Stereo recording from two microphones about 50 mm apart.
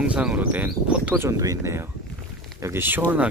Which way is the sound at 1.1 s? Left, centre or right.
Right.